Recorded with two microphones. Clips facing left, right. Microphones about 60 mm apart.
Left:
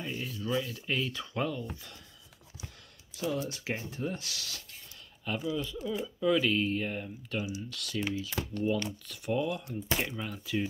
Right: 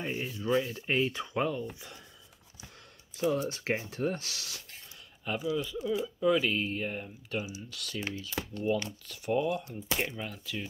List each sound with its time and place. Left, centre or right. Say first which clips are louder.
0.0 s speech: right 2 dB; right
1.2 s speech: right 2 dB; centre
3.2 s speech: right 4 dB; right
3.9 s speech: right 4 dB; right
4.2 s speech: left 1 dB; right
5.2 s speech: right 1 dB; centre
8.4 s speech: right 1 dB; centre
9.0 s speech: even; centre
9.3 s speech: right 2 dB; centre